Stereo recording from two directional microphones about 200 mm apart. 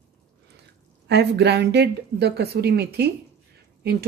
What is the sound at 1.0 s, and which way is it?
A woman's voice, 55° right (ahead or behind).